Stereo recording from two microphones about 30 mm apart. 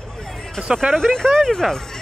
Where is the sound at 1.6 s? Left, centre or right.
Centre.